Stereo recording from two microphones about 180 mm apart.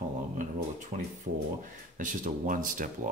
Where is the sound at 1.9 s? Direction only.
45° right (ahead or behind).